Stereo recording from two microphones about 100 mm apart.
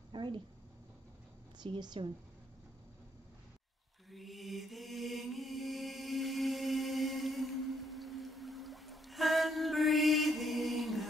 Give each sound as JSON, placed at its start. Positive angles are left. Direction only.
{"t": 0.1, "sound": "a sound", "side_deg": -55}
{"t": 1.6, "sound": "a woman's voice", "side_deg": -45}
{"t": 4.1, "sound": "mantra", "side_deg": 0}